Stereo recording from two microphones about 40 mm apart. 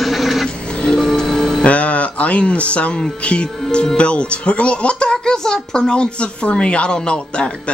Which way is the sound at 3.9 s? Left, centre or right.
Left.